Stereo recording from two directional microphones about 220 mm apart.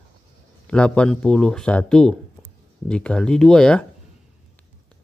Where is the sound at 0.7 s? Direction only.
5° left (ahead or behind).